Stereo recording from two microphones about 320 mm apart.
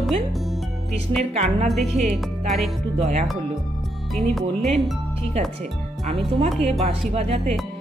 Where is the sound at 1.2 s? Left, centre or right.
Right.